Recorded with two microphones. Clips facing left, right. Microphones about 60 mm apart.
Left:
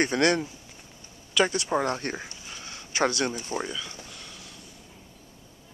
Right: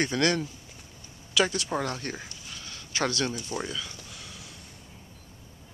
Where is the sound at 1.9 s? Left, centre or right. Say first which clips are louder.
Left 4 dB; left.